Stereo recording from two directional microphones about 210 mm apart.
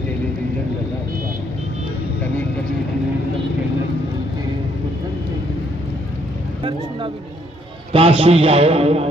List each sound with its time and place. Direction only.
7.9 s a man's voice: 30° right (ahead or behind)